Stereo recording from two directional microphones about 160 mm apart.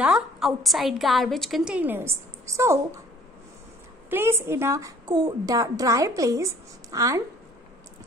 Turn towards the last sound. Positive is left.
turn(degrees=-20)  # may be behind; listen again after turning